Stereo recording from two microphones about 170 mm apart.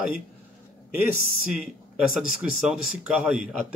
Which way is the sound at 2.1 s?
5° right (ahead or behind).